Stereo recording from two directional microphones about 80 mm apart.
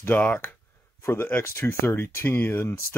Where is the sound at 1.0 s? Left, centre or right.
Left.